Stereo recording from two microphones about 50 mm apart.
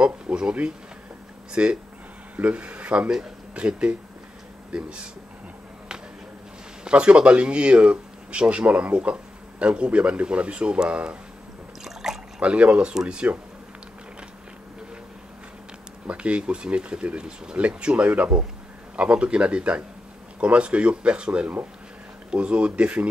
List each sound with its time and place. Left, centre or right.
0.0 s speech: centre
6.8 s speech: right
11.8 s a sound: centre
12.4 s speech: right
16.1 s speech: right